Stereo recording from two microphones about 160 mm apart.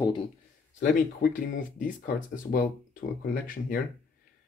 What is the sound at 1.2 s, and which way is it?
Speech, 60° left (ahead or behind).